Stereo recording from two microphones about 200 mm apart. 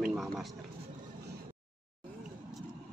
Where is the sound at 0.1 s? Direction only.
Centre (ahead or behind).